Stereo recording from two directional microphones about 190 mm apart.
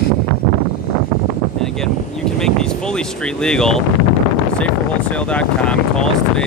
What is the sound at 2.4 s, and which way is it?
Speech, 5° left (ahead or behind).